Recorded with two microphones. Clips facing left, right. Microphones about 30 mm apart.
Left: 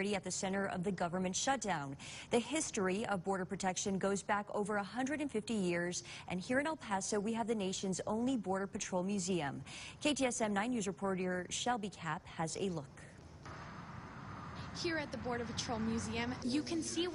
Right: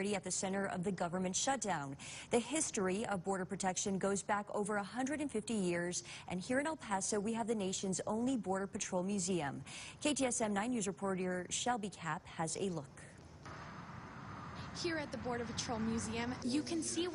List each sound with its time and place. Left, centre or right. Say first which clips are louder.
0.0 s a woman's voice: left 1 dB; centre
4.0 s a woman's voice: left 1 dB; centre
6.9 s a woman's voice: left 1 dB; centre
14.8 s a woman's voice: left 1 dB; centre